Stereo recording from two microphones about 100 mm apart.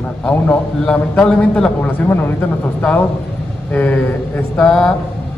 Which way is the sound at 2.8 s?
10° left (ahead or behind).